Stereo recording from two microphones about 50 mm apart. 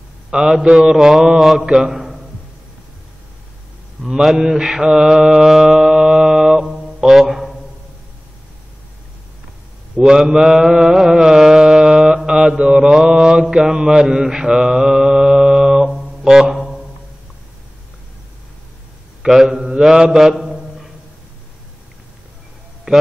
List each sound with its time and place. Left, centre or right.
0.3 s a man's voice: centre
0.7 s a man's voice: centre
4.1 s a man's voice: centre
4.4 s mantra: centre
6.7 s mantra: centre
9.9 s mantra: centre
19.2 s a man's voice: centre
19.6 s mantra: centre
22.9 s mantra: centre